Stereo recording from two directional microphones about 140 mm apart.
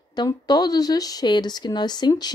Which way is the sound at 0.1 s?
30° left (ahead or behind).